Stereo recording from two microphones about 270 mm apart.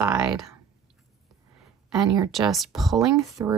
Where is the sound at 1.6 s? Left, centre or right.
Centre.